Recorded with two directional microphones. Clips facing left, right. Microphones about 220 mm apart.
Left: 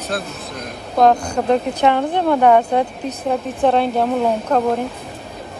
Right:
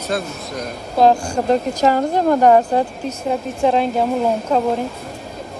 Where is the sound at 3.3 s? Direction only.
Centre (ahead or behind).